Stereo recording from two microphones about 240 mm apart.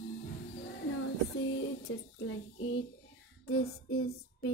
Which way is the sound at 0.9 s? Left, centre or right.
Left.